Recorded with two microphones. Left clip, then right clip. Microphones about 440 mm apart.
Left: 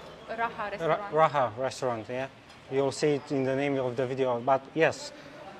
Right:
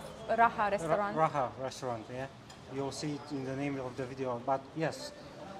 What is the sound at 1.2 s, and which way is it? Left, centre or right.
Speech, left.